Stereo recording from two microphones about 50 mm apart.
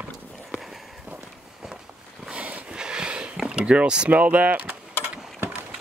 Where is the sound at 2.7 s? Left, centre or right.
Centre.